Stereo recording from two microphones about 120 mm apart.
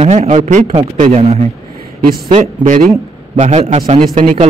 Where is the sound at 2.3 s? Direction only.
90° right; by 4.5 s 70° right (ahead or behind).